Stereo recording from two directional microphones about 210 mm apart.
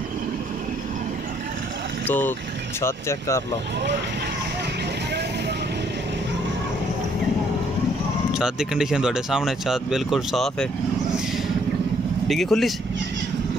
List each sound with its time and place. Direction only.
2.0 s speech: 10° left (ahead or behind)
8.4 s speech: 5° right (ahead or behind)
12.3 s speech: centre (ahead or behind)